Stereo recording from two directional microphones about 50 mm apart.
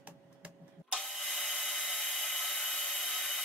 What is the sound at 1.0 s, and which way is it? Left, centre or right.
Wood, centre.